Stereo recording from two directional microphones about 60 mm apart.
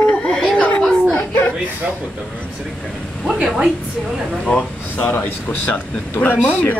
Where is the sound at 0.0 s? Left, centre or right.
Left.